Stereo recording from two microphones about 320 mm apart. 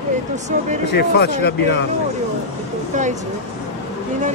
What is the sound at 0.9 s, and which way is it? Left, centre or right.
Speech, left.